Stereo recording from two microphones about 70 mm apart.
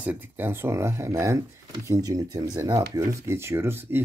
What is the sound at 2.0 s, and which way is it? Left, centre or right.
Speech, right.